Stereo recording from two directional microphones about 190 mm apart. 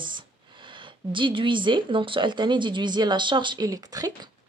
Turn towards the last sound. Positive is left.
turn(degrees=-20)  # may be behind; listen again after turning